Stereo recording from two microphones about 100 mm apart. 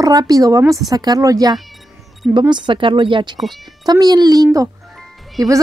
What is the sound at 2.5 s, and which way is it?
Speech, 55° right (ahead or behind).